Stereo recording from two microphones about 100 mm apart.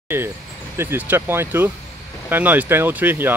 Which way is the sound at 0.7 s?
20° right (ahead or behind).